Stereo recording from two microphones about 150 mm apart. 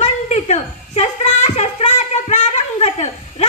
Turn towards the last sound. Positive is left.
turn(degrees=50)  # may be behind; listen again after turning